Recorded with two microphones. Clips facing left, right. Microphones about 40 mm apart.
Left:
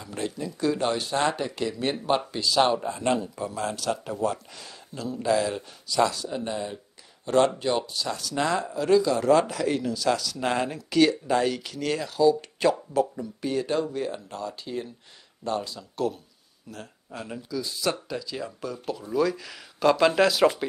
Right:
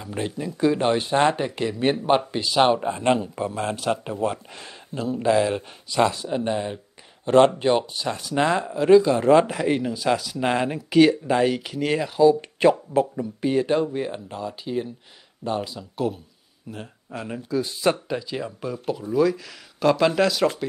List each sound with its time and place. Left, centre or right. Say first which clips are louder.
0.0 s a man's voice: right 3 dB; right
16.7 s speech: right 4 dB; right
17.5 s speech: right 6 dB; right; by 20.5 s centre